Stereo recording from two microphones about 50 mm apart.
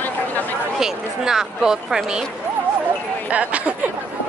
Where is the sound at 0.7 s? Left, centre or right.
Centre.